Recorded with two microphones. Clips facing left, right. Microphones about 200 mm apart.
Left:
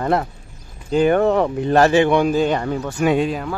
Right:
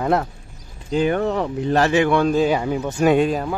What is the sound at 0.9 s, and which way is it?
Speech, 55° left (ahead or behind).